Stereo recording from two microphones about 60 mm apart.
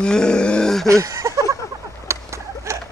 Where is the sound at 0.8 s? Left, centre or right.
Right.